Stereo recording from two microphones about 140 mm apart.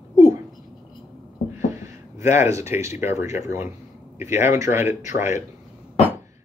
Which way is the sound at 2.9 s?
20° right (ahead or behind).